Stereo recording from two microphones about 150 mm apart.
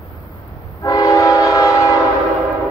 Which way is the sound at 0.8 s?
20° left (ahead or behind).